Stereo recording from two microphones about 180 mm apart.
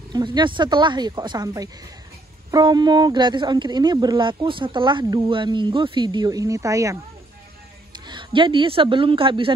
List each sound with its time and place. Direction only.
0.1 s a woman's voice: 25° right (ahead or behind)